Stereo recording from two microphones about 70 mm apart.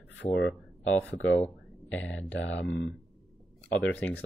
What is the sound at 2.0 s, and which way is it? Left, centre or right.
Speech, centre.